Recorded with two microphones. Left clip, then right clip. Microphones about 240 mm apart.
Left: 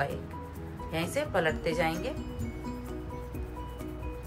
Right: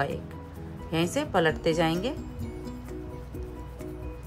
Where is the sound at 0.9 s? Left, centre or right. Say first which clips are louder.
Right 4 dB; right.